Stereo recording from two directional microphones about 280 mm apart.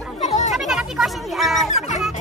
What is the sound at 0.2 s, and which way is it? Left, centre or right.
Children playing, left.